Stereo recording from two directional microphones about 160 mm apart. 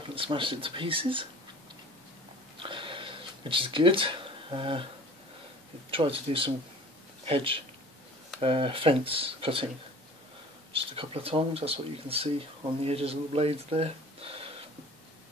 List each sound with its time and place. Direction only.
0.1 s speech: 35° right (ahead or behind)
2.5 s a sound: 35° right (ahead or behind)
5.9 s speech: 35° right (ahead or behind)
10.7 s speech: 35° right (ahead or behind)